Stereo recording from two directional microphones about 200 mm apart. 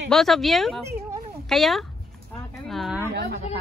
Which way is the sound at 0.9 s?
15° right (ahead or behind).